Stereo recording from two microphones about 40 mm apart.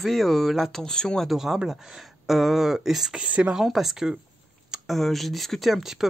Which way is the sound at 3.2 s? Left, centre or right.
Right.